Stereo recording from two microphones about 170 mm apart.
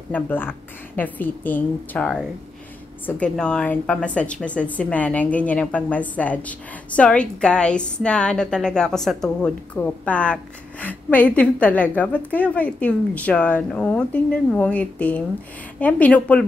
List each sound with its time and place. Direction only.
0.1 s a woman's voice: 10° left (ahead or behind)